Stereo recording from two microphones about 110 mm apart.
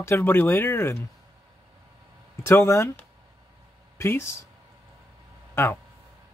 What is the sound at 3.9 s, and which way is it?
Speech, 25° left (ahead or behind).